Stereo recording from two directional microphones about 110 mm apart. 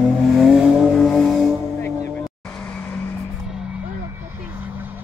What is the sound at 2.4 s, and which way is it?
Vehicle, 15° left (ahead or behind).